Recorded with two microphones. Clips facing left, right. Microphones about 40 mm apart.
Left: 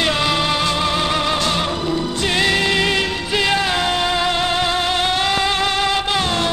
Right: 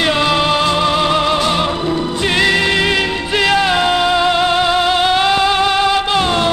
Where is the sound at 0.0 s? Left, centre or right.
Centre.